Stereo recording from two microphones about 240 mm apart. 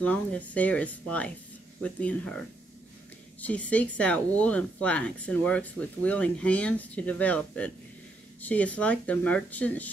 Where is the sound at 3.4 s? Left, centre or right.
Centre.